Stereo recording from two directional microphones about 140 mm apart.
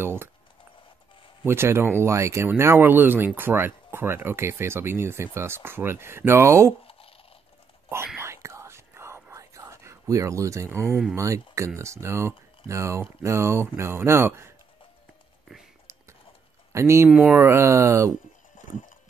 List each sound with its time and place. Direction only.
0.0 s a sound: 15° right (ahead or behind)
1.4 s speech: 15° right (ahead or behind)
6.8 s a sound: 40° left (ahead or behind)
8.2 s whispering: 20° right (ahead or behind)
11.1 s speech: 20° right (ahead or behind)
16.7 s speech: 20° right (ahead or behind)